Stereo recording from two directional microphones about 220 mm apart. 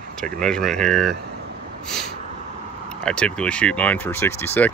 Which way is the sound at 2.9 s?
5° left (ahead or behind).